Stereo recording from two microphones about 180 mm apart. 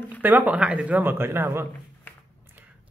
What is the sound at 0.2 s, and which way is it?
A man's voice, 10° right (ahead or behind).